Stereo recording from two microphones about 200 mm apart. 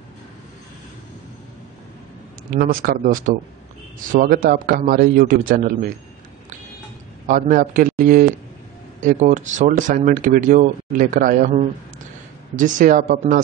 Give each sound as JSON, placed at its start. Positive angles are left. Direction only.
{"t": 2.5, "sound": "a man's voice", "side_deg": -45}
{"t": 7.2, "sound": "a man's voice", "side_deg": -40}